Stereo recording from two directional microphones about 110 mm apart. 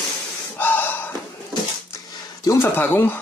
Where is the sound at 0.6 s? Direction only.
15° left (ahead or behind).